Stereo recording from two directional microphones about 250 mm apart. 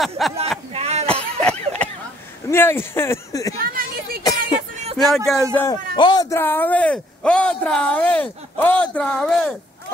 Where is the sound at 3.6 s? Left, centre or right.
Right.